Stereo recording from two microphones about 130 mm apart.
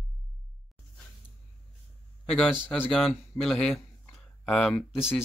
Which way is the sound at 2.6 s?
5° left (ahead or behind).